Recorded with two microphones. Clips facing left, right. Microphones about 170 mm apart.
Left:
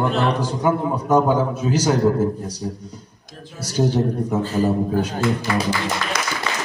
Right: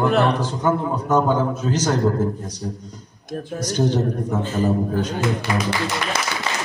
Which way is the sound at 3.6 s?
10° left (ahead or behind).